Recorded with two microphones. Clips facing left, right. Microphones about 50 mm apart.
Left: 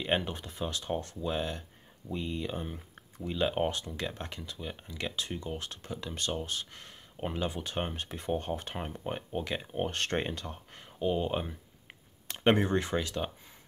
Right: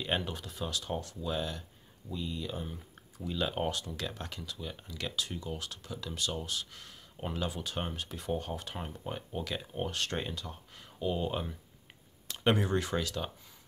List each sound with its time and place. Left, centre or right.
0.0 s speech: left
9.8 s speech: left
10.9 s speech: centre
11.9 s a sound: left